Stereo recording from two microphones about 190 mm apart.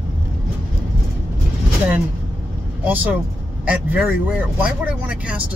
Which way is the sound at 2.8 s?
10° right (ahead or behind).